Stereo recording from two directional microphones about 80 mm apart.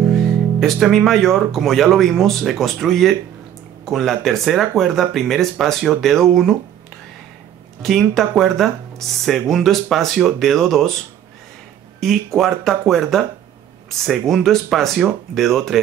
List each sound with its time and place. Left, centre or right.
0.0 s speech: centre
7.8 s speech: centre
12.0 s speech: centre